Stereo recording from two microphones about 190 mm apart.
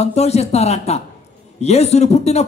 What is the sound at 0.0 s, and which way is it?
A man's voice, 35° left (ahead or behind).